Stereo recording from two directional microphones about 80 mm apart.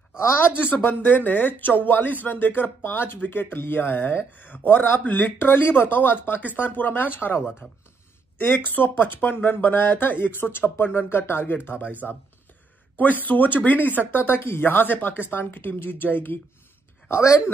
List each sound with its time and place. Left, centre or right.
0.2 s speech: left
12.9 s speech: left
17.1 s speech: left